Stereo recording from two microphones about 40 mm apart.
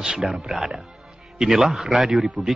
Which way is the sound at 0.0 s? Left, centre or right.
Centre.